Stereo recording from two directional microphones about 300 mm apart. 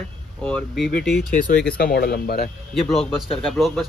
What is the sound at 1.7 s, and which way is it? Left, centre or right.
Speech, left.